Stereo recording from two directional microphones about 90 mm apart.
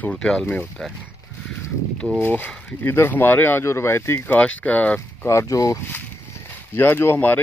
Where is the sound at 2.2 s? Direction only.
20° left (ahead or behind).